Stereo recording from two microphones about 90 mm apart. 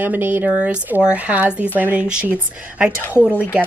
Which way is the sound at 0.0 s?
20° right (ahead or behind).